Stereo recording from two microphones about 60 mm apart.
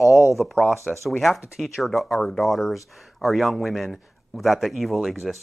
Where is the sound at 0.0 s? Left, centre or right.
Left.